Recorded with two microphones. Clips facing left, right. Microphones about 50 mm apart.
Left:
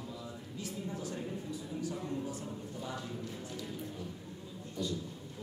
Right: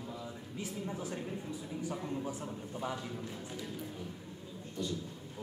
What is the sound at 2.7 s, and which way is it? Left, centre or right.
Speech, right.